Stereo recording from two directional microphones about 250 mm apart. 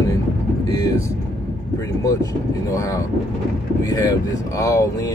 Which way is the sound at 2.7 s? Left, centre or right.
Centre.